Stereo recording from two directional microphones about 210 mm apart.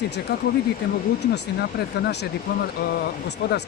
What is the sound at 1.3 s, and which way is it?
Speech, 50° left (ahead or behind).